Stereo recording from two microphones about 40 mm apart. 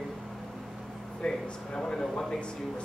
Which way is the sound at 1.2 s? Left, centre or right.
Centre.